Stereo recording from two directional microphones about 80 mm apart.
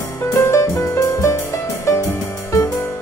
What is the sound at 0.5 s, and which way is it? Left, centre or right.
Music, left.